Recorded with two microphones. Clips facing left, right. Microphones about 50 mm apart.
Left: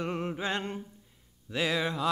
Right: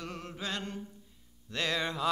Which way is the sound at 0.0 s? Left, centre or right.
Left.